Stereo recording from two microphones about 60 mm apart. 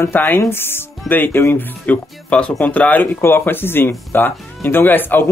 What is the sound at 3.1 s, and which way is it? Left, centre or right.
Speech, left.